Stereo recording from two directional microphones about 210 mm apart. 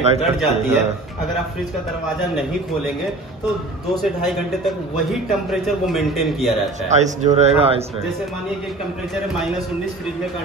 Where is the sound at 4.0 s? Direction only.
Centre (ahead or behind).